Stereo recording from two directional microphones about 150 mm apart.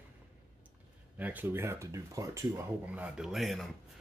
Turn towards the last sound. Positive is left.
turn(degrees=0)  # may be behind; listen again after turning